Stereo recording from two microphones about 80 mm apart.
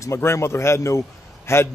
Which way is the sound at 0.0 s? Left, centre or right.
Left.